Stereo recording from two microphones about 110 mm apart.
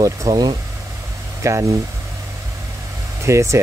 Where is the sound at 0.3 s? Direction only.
45° right (ahead or behind).